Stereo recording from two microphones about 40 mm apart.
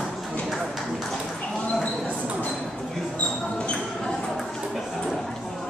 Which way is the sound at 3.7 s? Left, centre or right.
Centre.